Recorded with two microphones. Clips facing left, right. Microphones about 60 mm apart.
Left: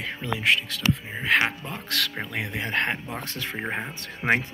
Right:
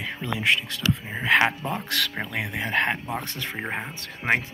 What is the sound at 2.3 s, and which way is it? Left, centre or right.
Speech, right.